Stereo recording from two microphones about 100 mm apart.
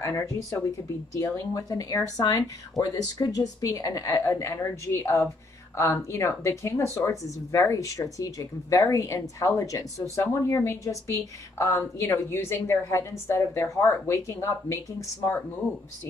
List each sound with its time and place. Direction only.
0.0 s speech: 30° left (ahead or behind)